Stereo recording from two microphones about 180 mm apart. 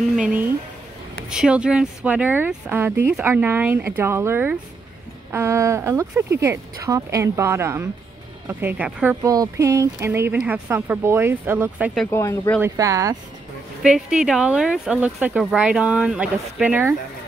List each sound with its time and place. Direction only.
0.1 s speech: 5° right (ahead or behind)
12.1 s speech: 15° left (ahead or behind)
12.6 s speech: 15° right (ahead or behind)
13.8 s speech: 5° right (ahead or behind)